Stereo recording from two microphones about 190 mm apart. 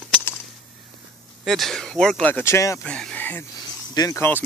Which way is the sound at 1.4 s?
Centre (ahead or behind).